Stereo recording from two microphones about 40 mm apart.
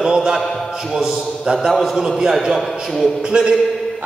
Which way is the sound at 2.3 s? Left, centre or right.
Centre.